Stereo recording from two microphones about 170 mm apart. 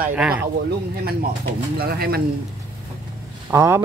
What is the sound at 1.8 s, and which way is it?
Speech, 65° right (ahead or behind).